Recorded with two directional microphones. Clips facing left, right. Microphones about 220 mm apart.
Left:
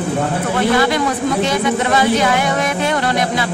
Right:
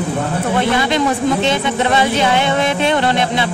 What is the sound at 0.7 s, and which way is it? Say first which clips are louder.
A woman's voice: even; 20° right (ahead or behind).